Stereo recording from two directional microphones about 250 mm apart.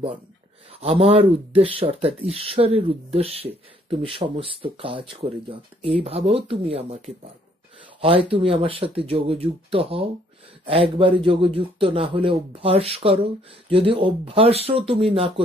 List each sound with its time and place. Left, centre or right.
0.7 s speech: right